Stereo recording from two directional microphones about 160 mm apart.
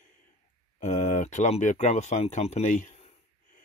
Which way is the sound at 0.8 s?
50° left (ahead or behind).